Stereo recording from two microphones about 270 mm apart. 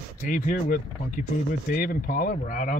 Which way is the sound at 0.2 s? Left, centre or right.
Left.